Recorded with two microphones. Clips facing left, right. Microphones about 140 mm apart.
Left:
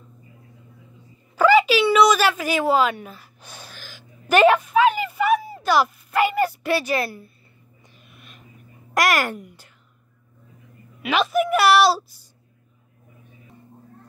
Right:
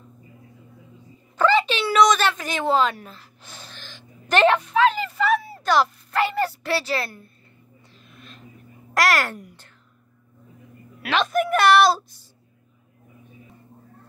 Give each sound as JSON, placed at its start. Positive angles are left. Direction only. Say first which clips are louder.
{"t": 1.3, "sound": "a sound", "louder": "left 4 dB", "side_deg": 10}
{"t": 8.1, "sound": "vehicle", "louder": "right 4 dB", "side_deg": 10}
{"t": 8.9, "sound": "a child's voice", "louder": "left 1 dB", "side_deg": 15}
{"t": 9.4, "sound": "speech", "louder": "left 1 dB", "side_deg": 0}
{"t": 11.0, "sound": "a woman's voice", "louder": "left 1 dB", "side_deg": 5}